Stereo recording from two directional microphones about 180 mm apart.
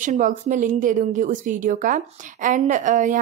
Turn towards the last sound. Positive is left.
turn(degrees=-45)  # may be behind; listen again after turning